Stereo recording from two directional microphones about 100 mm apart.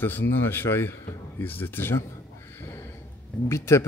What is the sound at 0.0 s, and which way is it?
Speech, 20° left (ahead or behind).